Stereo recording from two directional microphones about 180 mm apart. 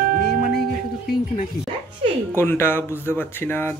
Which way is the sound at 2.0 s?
30° right (ahead or behind).